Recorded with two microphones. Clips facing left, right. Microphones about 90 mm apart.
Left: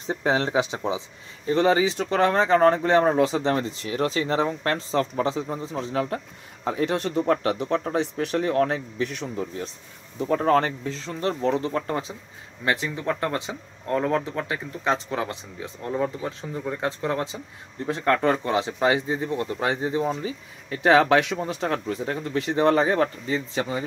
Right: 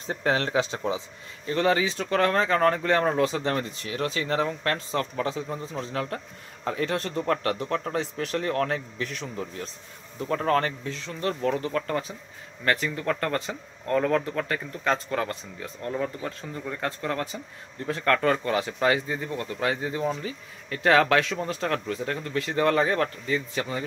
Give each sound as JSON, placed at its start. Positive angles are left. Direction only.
{"t": 0.0, "sound": "speech", "side_deg": 20}